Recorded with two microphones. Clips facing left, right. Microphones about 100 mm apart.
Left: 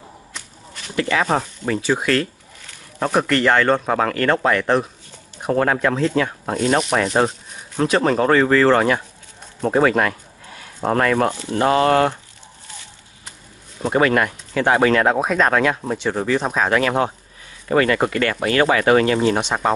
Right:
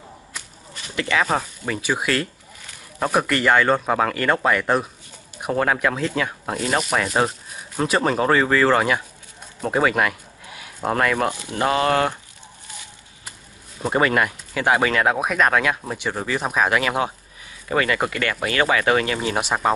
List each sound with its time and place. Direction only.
0.9 s speech: 25° left (ahead or behind)
1.7 s speech: 10° right (ahead or behind)
9.6 s a sound: 5° right (ahead or behind)
10.9 s speech: 5° right (ahead or behind)
11.6 s speech: 40° left (ahead or behind)
13.8 s speech: centre (ahead or behind)
17.9 s speech: 35° left (ahead or behind)
19.2 s speech: 5° right (ahead or behind)